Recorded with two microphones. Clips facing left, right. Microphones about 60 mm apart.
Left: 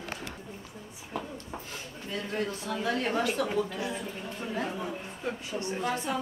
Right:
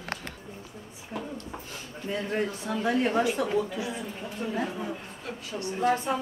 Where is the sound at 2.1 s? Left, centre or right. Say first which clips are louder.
Right 3 dB; right; by 4.7 s centre.